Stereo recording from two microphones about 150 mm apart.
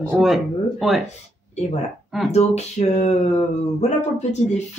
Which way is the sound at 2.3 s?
45° left (ahead or behind).